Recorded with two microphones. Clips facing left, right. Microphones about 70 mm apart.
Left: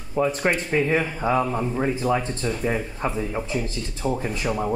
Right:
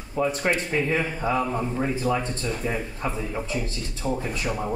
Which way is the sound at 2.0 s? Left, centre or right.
Centre.